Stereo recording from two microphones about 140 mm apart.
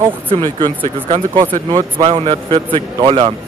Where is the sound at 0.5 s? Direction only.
35° right (ahead or behind).